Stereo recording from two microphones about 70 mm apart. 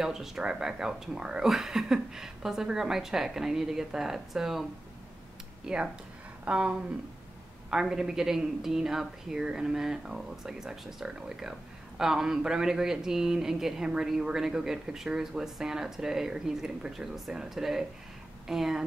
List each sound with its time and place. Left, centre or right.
0.0 s speech: centre
5.7 s speech: centre